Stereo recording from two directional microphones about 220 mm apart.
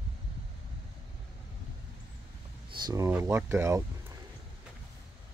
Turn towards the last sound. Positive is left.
turn(degrees=-10)  # may be behind; listen again after turning